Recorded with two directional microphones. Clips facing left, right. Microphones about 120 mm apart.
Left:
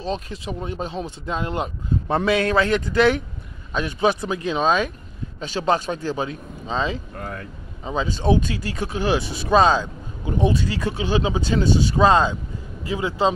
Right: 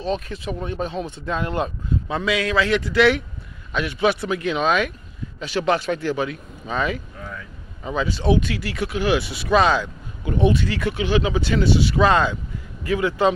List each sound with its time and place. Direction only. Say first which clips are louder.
0.0 s speech: right 2 dB; 35° left (ahead or behind)
2.0 s a man's voice: left 4 dB; 50° left (ahead or behind)
6.1 s speech: right 1 dB; 30° left (ahead or behind)
7.2 s a sound: left 3 dB; 60° left (ahead or behind)
7.8 s speech: even; 30° left (ahead or behind)